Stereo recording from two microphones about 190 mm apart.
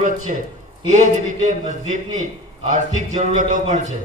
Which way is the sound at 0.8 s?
35° right (ahead or behind).